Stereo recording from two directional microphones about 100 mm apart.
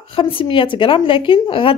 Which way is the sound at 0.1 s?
60° left (ahead or behind).